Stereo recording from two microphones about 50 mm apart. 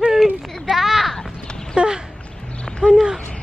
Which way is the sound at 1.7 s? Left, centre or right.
Centre.